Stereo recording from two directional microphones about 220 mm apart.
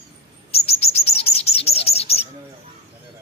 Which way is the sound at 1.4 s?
25° left (ahead or behind).